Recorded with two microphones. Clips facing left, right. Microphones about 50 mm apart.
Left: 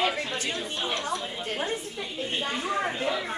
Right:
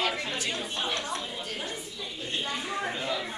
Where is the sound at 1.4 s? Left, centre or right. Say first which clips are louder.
Left 5 dB; left.